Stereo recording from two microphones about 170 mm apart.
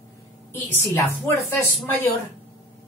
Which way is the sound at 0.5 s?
15° left (ahead or behind).